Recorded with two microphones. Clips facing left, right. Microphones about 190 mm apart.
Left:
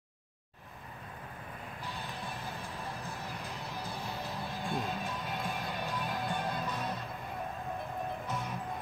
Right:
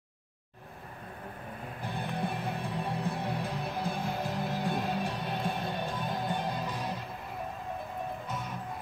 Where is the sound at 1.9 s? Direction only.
55° right (ahead or behind).